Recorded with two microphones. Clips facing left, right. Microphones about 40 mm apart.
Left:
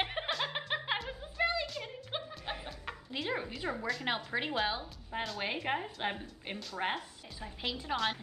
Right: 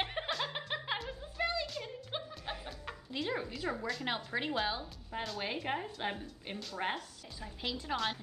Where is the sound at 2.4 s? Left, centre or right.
Centre.